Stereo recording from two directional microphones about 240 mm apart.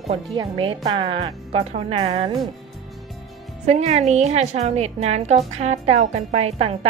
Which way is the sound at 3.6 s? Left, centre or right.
Right.